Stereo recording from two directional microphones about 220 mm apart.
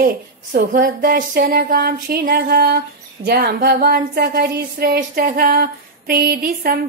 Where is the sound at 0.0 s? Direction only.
40° right (ahead or behind).